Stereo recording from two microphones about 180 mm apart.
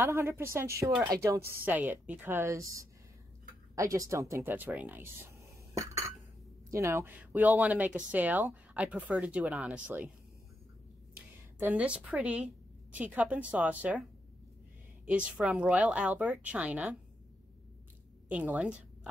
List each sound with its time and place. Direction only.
0.0 s a woman's voice: 15° right (ahead or behind)
1.5 s speech: 10° right (ahead or behind)
6.7 s speech: 15° right (ahead or behind)
11.1 s speech: 10° right (ahead or behind)
15.0 s speech: 5° right (ahead or behind)
18.3 s speech: 5° right (ahead or behind)